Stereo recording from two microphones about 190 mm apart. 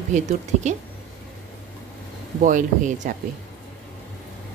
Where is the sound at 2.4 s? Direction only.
40° right (ahead or behind).